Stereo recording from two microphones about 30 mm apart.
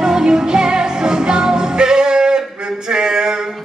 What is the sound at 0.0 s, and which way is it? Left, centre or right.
Music, right.